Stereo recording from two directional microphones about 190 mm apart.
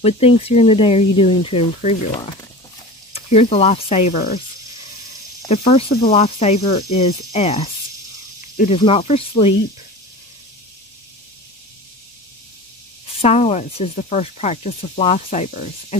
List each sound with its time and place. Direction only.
0.0 s speech: 30° left (ahead or behind)
2.1 s speech: 25° left (ahead or behind)
5.5 s speech: 30° left (ahead or behind)
13.0 s speech: 35° left (ahead or behind)